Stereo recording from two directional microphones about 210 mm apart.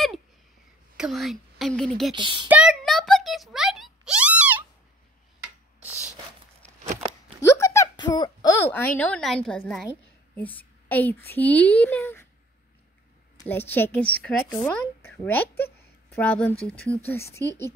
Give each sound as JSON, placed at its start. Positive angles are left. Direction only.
{"t": 0.9, "sound": "a woman's voice", "side_deg": 0}
{"t": 2.1, "sound": "speech", "side_deg": -25}
{"t": 2.4, "sound": "a sound", "side_deg": -5}
{"t": 6.6, "sound": "a sound", "side_deg": 5}
{"t": 9.8, "sound": "a woman's voice", "side_deg": 10}
{"t": 13.5, "sound": "a woman's voice", "side_deg": 10}